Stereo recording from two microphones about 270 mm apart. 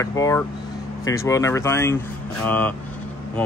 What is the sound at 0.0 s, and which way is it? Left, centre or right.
Speech, centre.